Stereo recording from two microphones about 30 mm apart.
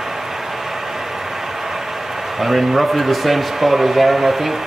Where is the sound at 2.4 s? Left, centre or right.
Centre.